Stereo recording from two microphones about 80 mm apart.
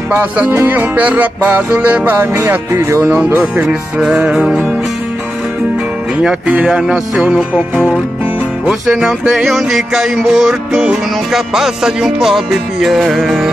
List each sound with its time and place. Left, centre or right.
0.2 s music: right
2.7 s speech: right
3.0 s music: right
6.4 s music: centre